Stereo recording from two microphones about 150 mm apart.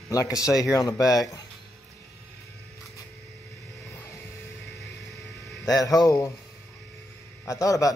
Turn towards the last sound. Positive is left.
turn(degrees=20)  # may be behind; listen again after turning